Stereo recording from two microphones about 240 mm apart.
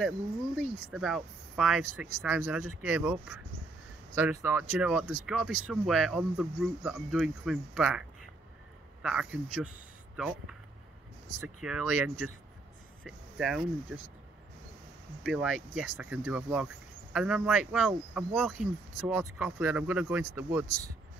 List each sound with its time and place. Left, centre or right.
0.6 s speech: centre
9.0 s speech: centre
15.2 s speech: centre